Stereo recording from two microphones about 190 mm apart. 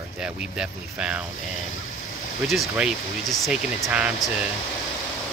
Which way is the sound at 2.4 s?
Centre (ahead or behind).